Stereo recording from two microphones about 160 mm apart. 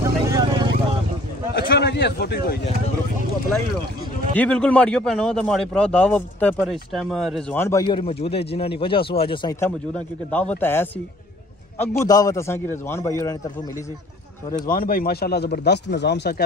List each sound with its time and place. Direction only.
0.0 s vehicle: 25° right (ahead or behind)
1.5 s a sound: 90° left
4.4 s a man's voice: 5° left (ahead or behind)
7.5 s a man's voice: 15° left (ahead or behind)
7.9 s speech: 35° left (ahead or behind)
9.6 s a man's voice: 10° left (ahead or behind)
12.0 s a man's voice: 20° left (ahead or behind)
14.7 s speech: 65° left (ahead or behind); by 16.4 s 90° left